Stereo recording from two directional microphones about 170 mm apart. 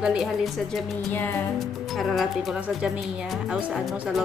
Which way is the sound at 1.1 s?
10° left (ahead or behind).